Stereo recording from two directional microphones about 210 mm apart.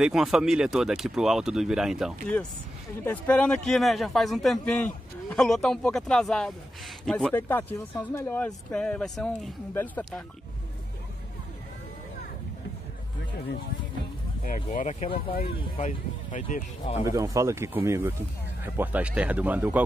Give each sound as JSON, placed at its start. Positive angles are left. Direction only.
{"t": 0.0, "sound": "a man's voice", "side_deg": 0}
{"t": 3.0, "sound": "a man's voice", "side_deg": 10}
{"t": 14.4, "sound": "speech", "side_deg": 40}
{"t": 17.0, "sound": "speech", "side_deg": -15}